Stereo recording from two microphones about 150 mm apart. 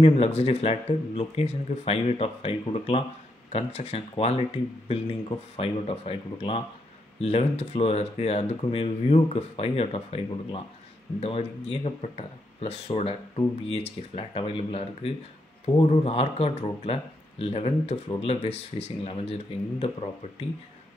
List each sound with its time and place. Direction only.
0.0 s speech: 45° left (ahead or behind)